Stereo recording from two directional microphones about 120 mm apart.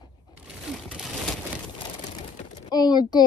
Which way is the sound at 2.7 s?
35° left (ahead or behind).